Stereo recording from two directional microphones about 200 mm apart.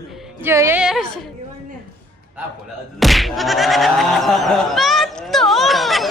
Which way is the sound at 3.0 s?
Centre (ahead or behind).